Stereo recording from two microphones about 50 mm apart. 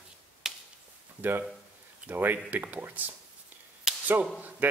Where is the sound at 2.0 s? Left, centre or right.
Right.